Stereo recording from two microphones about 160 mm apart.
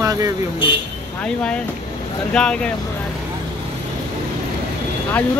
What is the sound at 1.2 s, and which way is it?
Speech, 5° left (ahead or behind).